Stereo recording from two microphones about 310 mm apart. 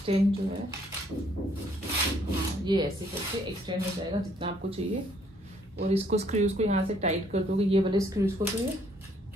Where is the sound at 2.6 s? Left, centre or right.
Centre.